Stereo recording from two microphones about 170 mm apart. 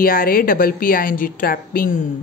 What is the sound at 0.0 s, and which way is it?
A woman's voice, 60° left (ahead or behind).